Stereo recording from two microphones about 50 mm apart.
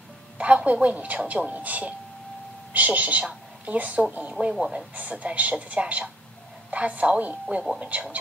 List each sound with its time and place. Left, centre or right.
0.4 s music: right
0.9 s a woman's voice: right
4.5 s speech: centre
4.9 s a woman's voice: right